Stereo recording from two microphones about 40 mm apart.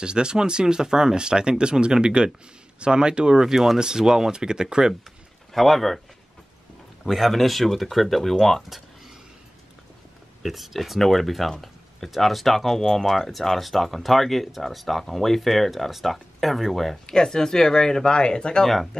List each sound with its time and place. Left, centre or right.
0.0 s speech: right
5.5 s speech: centre
7.1 s speech: centre
8.6 s a sound: centre
10.4 s speech: centre
17.0 s speech: centre